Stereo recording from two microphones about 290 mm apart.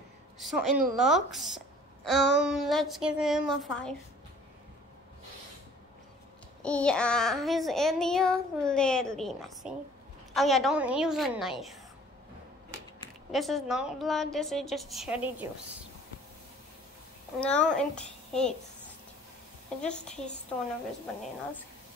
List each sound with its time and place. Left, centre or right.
0.4 s a child's voice: centre
6.6 s a child's voice: centre
13.3 s a child's voice: centre
17.4 s a child's voice: centre
19.8 s a child's voice: centre